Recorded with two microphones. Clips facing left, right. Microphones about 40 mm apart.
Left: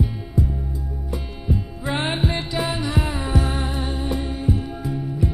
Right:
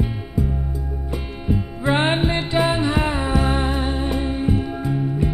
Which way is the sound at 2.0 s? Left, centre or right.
Right.